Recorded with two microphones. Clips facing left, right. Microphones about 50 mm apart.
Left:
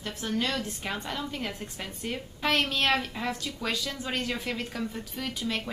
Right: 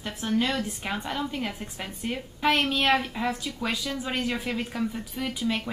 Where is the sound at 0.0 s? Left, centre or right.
Centre.